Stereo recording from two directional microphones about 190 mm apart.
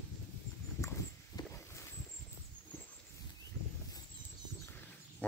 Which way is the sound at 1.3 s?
20° left (ahead or behind).